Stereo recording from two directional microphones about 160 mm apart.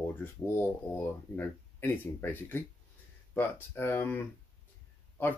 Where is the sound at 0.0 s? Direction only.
15° left (ahead or behind).